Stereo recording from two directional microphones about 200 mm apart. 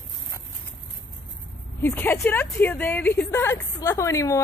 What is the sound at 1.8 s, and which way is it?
A woman's voice, 10° left (ahead or behind).